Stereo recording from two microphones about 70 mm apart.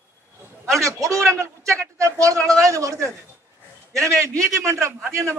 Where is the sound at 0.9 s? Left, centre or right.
Right.